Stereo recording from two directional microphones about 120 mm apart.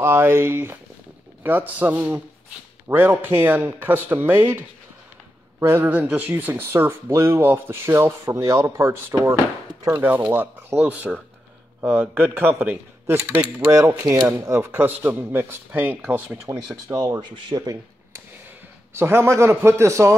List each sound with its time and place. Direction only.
0.0 s speech: 20° right (ahead or behind)
5.9 s a man's voice: 10° right (ahead or behind)
16.8 s speech: 30° right (ahead or behind)
18.9 s speech: 20° right (ahead or behind)